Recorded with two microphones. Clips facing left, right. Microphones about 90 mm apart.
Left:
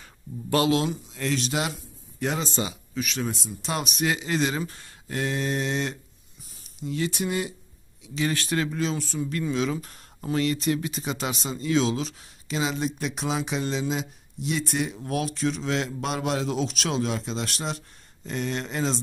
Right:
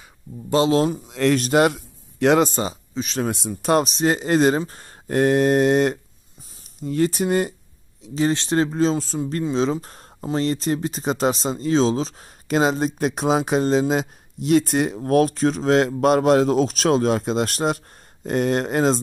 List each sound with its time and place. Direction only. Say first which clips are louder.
0.5 s speech: right 4 dB; 25° right (ahead or behind)
1.0 s speech: right 9 dB; 65° right (ahead or behind)
1.4 s speech: right 11 dB; 55° right (ahead or behind)
2.1 s speech: right 12 dB; 70° right (ahead or behind)
2.5 s speech: right 4 dB; 40° right (ahead or behind)
2.9 s a sound: right 3 dB; 30° right (ahead or behind)
3.3 s speech: right 9 dB; 65° right (ahead or behind)
3.7 s speech: right 8 dB; 35° right (ahead or behind)
12.4 s speech: right 8 dB; 50° right (ahead or behind)